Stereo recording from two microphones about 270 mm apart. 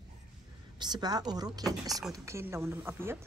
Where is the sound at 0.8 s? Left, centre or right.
Centre.